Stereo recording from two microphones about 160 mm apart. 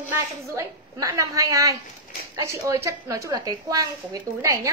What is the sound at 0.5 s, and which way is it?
A woman's voice, 20° right (ahead or behind).